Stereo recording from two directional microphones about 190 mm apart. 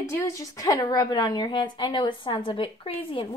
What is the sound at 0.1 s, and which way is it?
A woman's voice, 15° left (ahead or behind).